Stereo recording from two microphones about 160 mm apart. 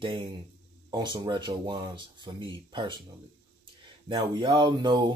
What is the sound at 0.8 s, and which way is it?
Speech, 25° right (ahead or behind).